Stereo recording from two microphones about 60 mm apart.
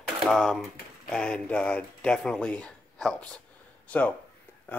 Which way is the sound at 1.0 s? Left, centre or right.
Centre.